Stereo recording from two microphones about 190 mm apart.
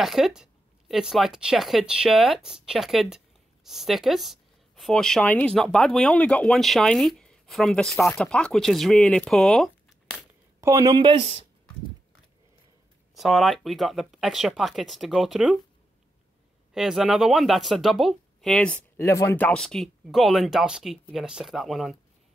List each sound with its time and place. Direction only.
0.0 s speech: centre (ahead or behind)
10.6 s speech: 15° right (ahead or behind)
13.1 s speech: centre (ahead or behind)
16.7 s speech: centre (ahead or behind)